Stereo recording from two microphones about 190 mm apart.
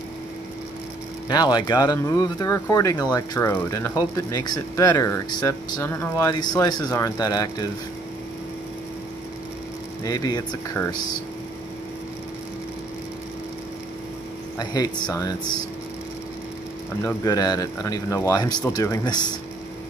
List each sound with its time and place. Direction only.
1.3 s speech: 20° left (ahead or behind)
10.0 s speech: 20° left (ahead or behind)
14.6 s speech: 20° left (ahead or behind)
17.0 s speech: 20° left (ahead or behind)